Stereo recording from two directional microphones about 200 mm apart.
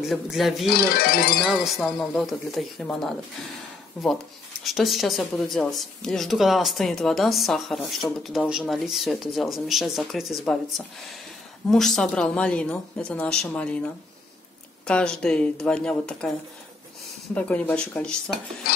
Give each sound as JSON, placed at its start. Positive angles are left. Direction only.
{"t": 0.1, "sound": "speech", "side_deg": 0}
{"t": 0.7, "sound": "speech", "side_deg": 50}
{"t": 1.6, "sound": "speech", "side_deg": 0}
{"t": 11.7, "sound": "speech", "side_deg": 0}
{"t": 14.9, "sound": "speech", "side_deg": 5}
{"t": 17.3, "sound": "speech", "side_deg": 5}